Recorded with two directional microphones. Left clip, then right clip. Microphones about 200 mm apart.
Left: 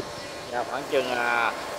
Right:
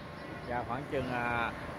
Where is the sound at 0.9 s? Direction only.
10° left (ahead or behind).